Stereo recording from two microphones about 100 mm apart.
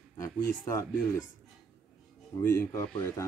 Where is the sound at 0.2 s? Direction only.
30° left (ahead or behind).